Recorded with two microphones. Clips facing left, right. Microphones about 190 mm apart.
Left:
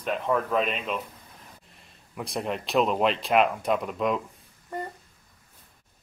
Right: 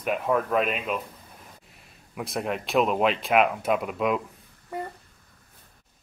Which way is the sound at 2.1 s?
Centre (ahead or behind).